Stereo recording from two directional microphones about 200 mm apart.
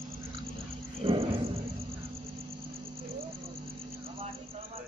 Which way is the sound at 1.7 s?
50° right (ahead or behind).